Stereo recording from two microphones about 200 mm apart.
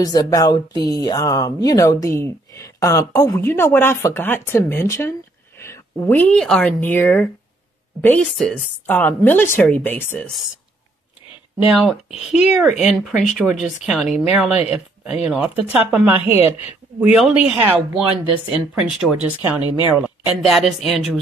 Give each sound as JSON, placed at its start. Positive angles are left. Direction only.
{"t": 0.0, "sound": "speech", "side_deg": 20}
{"t": 11.6, "sound": "a woman's voice", "side_deg": 0}